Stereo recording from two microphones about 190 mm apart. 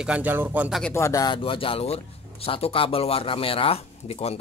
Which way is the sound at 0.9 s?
15° left (ahead or behind).